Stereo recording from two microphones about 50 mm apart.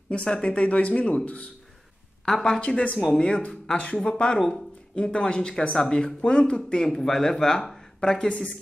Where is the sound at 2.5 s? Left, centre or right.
Left.